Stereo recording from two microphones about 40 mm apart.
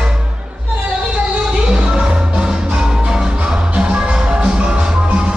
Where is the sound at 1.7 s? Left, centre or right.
Centre.